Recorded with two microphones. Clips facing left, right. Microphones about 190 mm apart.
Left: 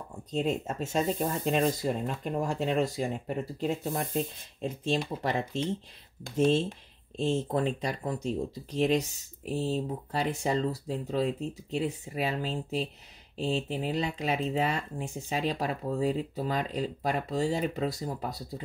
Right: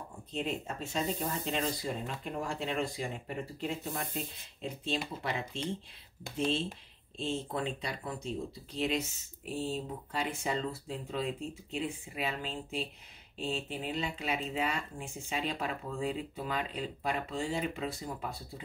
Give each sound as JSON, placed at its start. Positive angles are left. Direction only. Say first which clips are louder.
{"t": 0.3, "sound": "speech", "louder": "left 6 dB", "side_deg": 45}